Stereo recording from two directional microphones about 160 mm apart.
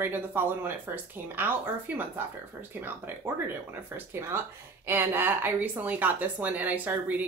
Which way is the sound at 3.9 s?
15° right (ahead or behind).